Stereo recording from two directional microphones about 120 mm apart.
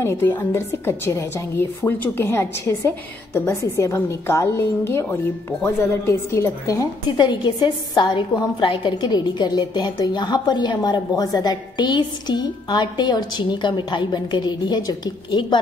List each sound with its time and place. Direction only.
0.0 s a woman's voice: 20° left (ahead or behind)